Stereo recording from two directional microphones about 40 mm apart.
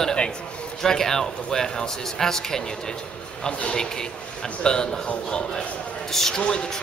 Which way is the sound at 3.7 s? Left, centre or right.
Centre.